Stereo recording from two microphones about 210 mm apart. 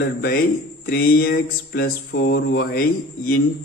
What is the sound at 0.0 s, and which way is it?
Speech, 50° left (ahead or behind).